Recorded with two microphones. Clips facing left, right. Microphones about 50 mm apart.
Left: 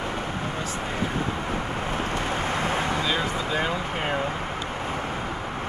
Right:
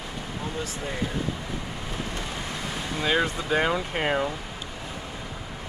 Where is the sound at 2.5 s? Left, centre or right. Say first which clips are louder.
Left 7 dB; left.